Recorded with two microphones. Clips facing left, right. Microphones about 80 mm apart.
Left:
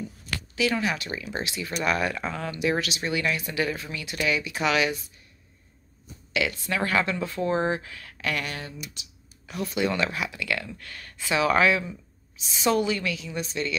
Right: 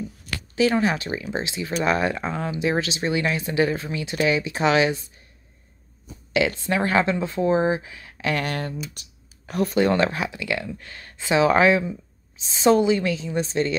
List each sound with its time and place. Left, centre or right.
0.6 s a woman's voice: right
6.3 s speech: right
8.4 s a woman's voice: right